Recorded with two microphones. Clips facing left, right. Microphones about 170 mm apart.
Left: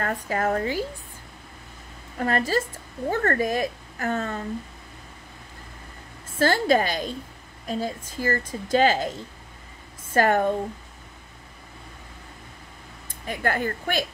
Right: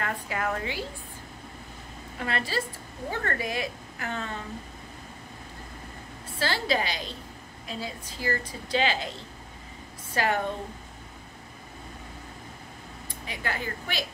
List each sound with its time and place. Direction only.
0.0 s a woman's voice: 45° left (ahead or behind)
2.1 s a woman's voice: 45° left (ahead or behind)
6.3 s a woman's voice: 50° left (ahead or behind)
10.1 s a woman's voice: 50° left (ahead or behind)
13.3 s a woman's voice: 50° left (ahead or behind)